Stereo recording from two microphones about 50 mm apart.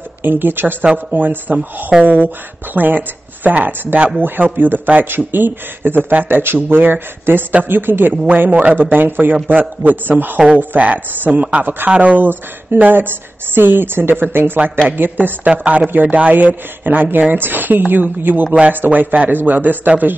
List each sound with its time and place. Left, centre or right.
0.2 s speech: right
12.3 s speech: right